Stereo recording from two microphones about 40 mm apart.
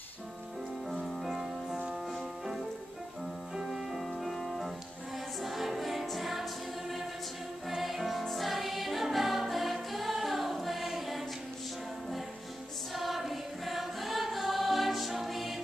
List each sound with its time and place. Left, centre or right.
0.8 s music: centre
3.6 s music: centre
12.9 s choir: centre